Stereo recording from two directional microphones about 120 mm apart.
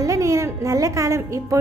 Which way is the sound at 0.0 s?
25° right (ahead or behind).